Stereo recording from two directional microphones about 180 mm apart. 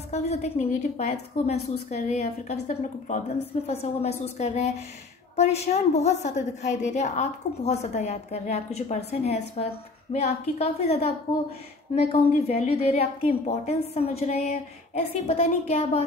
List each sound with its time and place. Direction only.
0.1 s a woman's voice: 40° left (ahead or behind)
3.6 s a woman's voice: 35° left (ahead or behind)